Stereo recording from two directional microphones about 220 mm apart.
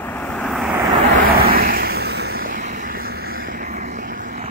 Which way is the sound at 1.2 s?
45° right (ahead or behind).